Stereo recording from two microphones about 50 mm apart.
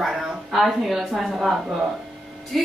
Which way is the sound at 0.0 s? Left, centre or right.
Centre.